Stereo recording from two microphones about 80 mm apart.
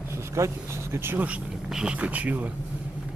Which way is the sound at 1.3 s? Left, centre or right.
Centre.